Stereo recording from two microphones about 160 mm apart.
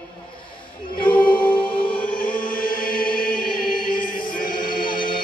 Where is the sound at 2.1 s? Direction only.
60° left (ahead or behind).